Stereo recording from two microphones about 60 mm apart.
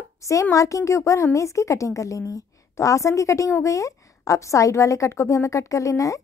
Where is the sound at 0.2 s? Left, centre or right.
Left.